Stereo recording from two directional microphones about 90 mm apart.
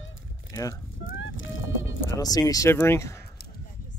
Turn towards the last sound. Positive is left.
turn(degrees=30)  # may be behind; listen again after turning